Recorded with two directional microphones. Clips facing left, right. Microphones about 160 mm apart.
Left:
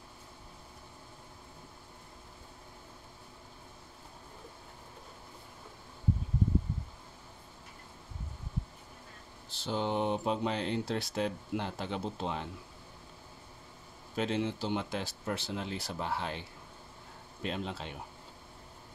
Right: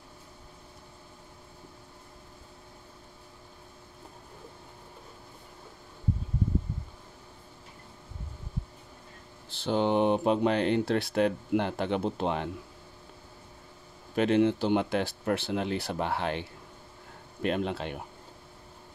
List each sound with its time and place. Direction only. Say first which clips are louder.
9.5 s speech: right 7 dB; 65° right (ahead or behind)
14.1 s speech: right 9 dB; 65° right (ahead or behind)